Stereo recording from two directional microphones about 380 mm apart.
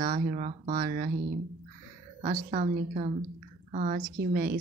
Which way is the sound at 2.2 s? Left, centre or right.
Right.